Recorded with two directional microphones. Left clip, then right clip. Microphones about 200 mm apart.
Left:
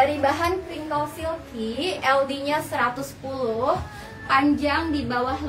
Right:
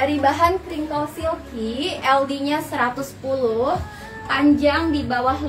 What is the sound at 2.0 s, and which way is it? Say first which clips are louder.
Music: right 3 dB; 10° left (ahead or behind).